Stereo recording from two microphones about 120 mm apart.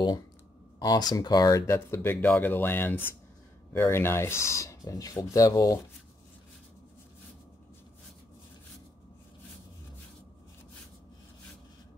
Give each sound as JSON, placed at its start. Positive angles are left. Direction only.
{"t": 0.7, "sound": "speech", "side_deg": 35}
{"t": 1.7, "sound": "speech", "side_deg": 20}